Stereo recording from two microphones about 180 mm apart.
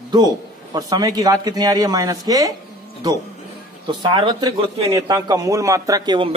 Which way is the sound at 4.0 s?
25° right (ahead or behind).